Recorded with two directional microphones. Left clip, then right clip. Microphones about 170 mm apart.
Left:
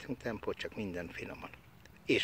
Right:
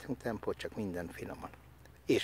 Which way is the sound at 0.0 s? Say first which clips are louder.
Right 1 dB; 15° right (ahead or behind).